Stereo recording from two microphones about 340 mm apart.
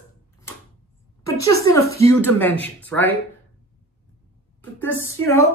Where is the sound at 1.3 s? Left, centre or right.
Left.